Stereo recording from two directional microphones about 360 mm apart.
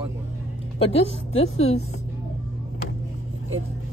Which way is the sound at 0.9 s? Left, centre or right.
Centre.